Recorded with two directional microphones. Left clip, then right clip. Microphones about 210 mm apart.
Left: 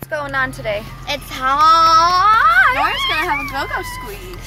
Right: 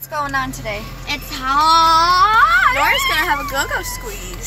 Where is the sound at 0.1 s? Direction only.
25° left (ahead or behind).